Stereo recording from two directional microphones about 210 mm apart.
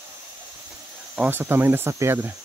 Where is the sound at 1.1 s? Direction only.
10° right (ahead or behind).